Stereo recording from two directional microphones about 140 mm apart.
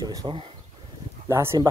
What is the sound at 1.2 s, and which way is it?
Speech, 20° right (ahead or behind).